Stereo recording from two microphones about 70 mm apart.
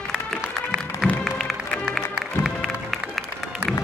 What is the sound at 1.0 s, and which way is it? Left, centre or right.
Music, centre.